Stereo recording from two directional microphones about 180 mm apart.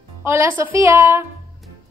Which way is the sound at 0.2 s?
15° right (ahead or behind).